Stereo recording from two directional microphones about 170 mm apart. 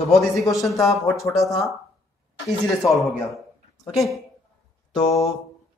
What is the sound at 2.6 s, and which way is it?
A man's voice, centre (ahead or behind).